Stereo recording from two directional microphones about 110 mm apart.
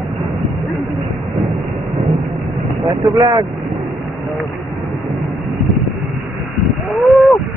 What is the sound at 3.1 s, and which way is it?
Speech, 35° right (ahead or behind).